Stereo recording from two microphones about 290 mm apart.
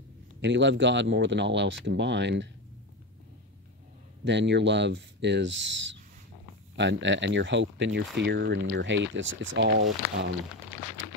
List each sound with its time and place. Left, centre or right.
0.4 s speech: right
4.2 s speech: right